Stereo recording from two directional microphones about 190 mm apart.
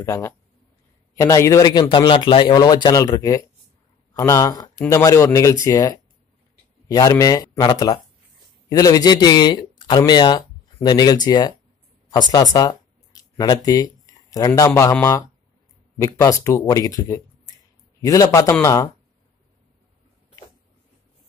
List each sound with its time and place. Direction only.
0.0 s a man's voice: 15° left (ahead or behind)